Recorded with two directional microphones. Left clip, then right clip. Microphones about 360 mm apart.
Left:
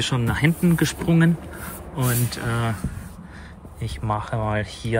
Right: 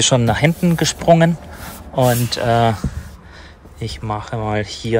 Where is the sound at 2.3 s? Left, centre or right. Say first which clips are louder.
Right 12 dB; centre.